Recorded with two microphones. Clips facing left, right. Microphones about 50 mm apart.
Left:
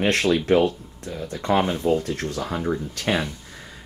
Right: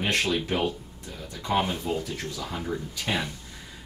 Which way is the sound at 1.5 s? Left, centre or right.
Left.